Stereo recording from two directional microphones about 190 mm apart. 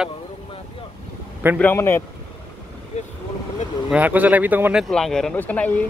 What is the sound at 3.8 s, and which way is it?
Speech, 5° right (ahead or behind).